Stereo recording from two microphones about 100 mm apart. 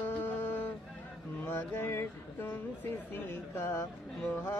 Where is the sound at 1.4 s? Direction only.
20° left (ahead or behind).